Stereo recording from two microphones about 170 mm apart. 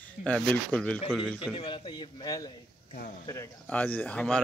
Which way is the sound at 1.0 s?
Centre (ahead or behind).